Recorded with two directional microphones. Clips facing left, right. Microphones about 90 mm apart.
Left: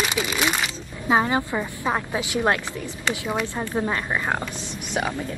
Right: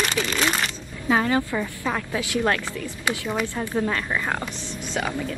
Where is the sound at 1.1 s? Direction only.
20° left (ahead or behind).